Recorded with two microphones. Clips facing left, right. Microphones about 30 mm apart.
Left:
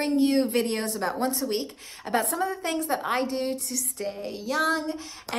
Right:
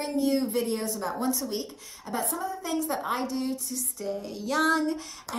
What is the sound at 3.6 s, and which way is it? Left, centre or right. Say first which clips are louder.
Music: left 3 dB; left.